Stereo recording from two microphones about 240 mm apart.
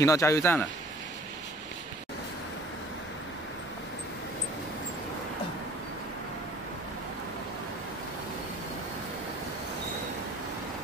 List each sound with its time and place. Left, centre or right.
0.0 s speech: centre